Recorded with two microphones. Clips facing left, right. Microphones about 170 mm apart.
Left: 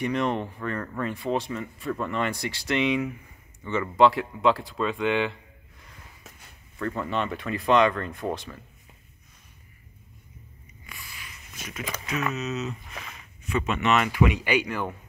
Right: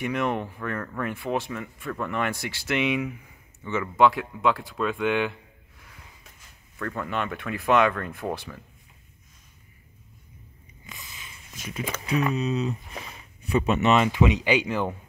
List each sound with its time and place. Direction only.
0.0 s speech: 5° right (ahead or behind)
6.9 s speech: centre (ahead or behind)
10.9 s a sound: 20° right (ahead or behind)
12.1 s speech: 30° right (ahead or behind)